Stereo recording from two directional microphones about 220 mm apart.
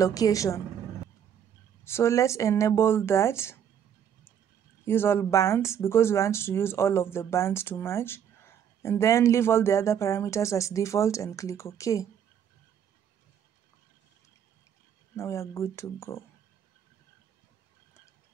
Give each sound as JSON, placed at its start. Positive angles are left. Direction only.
{"t": 0.0, "sound": "speech", "side_deg": 15}
{"t": 1.9, "sound": "speech", "side_deg": 10}
{"t": 4.8, "sound": "speech", "side_deg": 10}
{"t": 15.1, "sound": "speech", "side_deg": 10}